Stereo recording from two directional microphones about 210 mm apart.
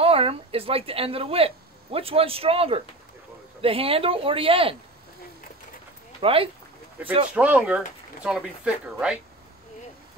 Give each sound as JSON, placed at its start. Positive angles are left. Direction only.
{"t": 0.0, "sound": "a woman's voice", "side_deg": -25}
{"t": 6.2, "sound": "speech", "side_deg": -25}
{"t": 7.3, "sound": "speech", "side_deg": -5}